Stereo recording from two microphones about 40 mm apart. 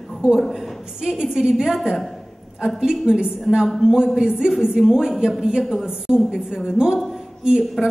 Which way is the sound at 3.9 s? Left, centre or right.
Centre.